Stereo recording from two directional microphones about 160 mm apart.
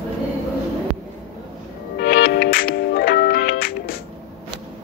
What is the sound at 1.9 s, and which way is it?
Music, 85° left.